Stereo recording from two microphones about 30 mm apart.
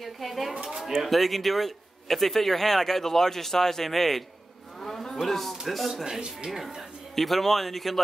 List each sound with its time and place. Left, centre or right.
0.0 s speech: centre
1.0 s speech: centre
4.7 s cattle: centre
5.7 s speech: centre
6.0 s speech: centre
7.2 s speech: centre